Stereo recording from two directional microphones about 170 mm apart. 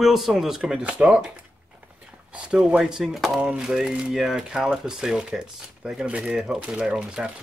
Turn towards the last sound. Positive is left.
turn(degrees=-5)  # may be behind; listen again after turning